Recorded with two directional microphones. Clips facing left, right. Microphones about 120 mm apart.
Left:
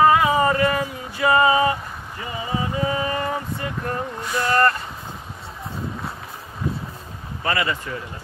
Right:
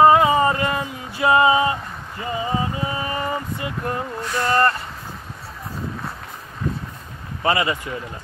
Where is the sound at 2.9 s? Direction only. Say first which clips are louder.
Left 1 dB; 15° right (ahead or behind).